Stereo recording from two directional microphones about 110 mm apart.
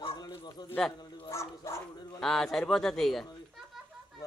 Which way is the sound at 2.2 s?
5° left (ahead or behind).